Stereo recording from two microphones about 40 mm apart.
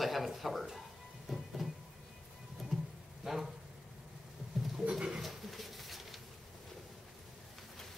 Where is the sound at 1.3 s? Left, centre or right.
Centre.